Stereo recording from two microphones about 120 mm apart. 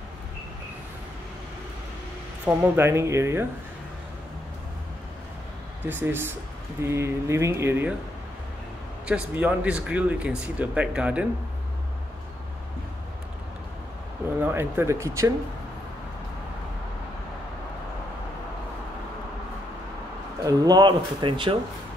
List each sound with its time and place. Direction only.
2.4 s speech: 20° right (ahead or behind)
5.9 s speech: 15° right (ahead or behind)
9.0 s speech: 10° right (ahead or behind)
14.4 s speech: 20° right (ahead or behind)
20.4 s speech: 35° right (ahead or behind)